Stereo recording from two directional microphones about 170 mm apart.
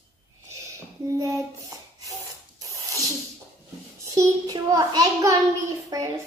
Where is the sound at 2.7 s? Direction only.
20° right (ahead or behind).